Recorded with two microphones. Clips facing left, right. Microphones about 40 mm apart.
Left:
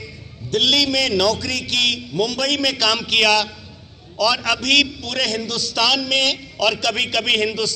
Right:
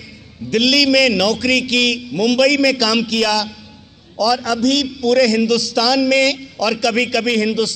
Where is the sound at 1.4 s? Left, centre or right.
Right.